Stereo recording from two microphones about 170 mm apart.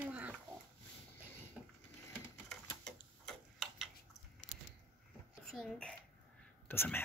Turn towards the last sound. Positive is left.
turn(degrees=15)  # may be behind; listen again after turning